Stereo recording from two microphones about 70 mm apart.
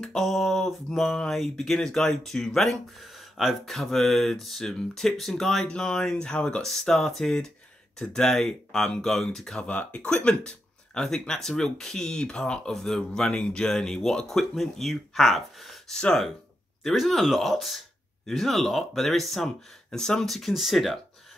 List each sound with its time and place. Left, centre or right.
0.0 s speech: centre
9.7 s speech: centre
16.0 s speech: centre
16.8 s speech: centre